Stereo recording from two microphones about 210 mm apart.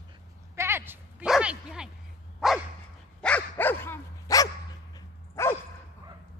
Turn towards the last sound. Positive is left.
turn(degrees=10)  # may be behind; listen again after turning